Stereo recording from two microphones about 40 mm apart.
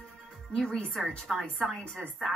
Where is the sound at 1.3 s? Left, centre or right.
Right.